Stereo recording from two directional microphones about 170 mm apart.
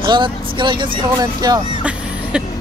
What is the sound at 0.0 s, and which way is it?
Speech, 30° right (ahead or behind).